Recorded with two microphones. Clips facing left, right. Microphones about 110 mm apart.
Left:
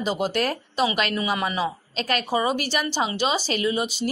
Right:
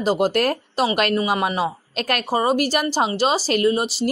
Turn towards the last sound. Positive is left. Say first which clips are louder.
# right 5 dB
turn(degrees=-45)  # may be behind; listen again after turning